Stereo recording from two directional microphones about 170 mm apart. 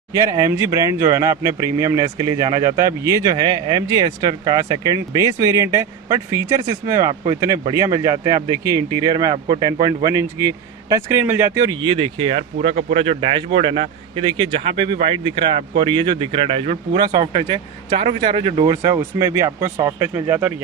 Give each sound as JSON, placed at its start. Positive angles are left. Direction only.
{"t": 0.1, "sound": "speech", "side_deg": -20}
{"t": 18.8, "sound": "speech", "side_deg": -20}